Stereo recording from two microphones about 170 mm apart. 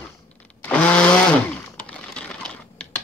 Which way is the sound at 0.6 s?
5° left (ahead or behind).